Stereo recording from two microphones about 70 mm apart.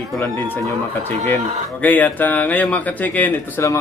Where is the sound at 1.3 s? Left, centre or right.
Left.